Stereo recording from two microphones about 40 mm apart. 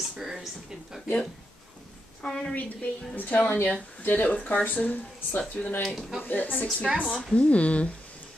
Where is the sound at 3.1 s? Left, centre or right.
Left.